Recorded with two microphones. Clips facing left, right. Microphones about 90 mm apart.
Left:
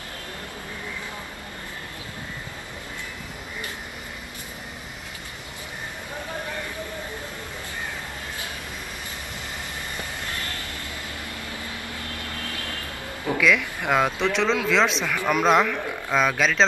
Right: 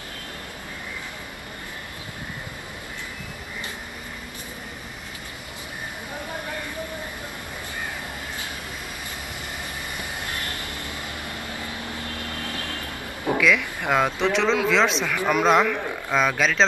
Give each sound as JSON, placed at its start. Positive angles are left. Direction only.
{"t": 11.6, "sound": "vehicle", "side_deg": -25}
{"t": 13.4, "sound": "speech", "side_deg": 0}